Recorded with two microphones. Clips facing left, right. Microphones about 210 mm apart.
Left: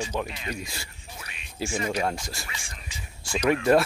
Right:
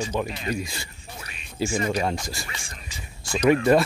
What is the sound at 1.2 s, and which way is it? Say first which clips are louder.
Music: right 1 dB; 40° right (ahead or behind).